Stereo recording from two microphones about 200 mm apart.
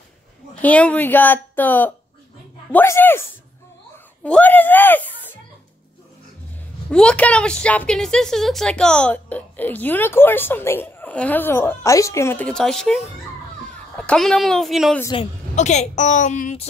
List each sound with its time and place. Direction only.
0.6 s a woman's voice: 5° left (ahead or behind)
6.9 s a woman's voice: 5° left (ahead or behind)
15.1 s a woman's voice: 35° left (ahead or behind)